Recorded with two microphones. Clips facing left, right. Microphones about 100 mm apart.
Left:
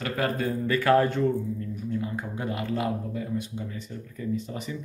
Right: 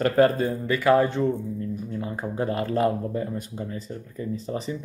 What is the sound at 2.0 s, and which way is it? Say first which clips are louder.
Speech: right 4 dB; 35° right (ahead or behind).